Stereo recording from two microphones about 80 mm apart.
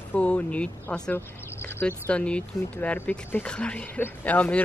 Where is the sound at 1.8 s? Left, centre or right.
Centre.